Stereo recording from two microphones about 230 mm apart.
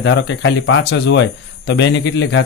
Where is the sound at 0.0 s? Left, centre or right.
Left.